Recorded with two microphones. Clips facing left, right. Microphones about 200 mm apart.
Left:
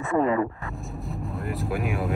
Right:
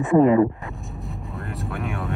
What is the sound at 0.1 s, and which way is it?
Speech, 20° right (ahead or behind).